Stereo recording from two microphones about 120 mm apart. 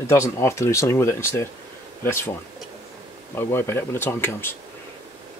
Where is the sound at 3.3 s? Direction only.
20° left (ahead or behind).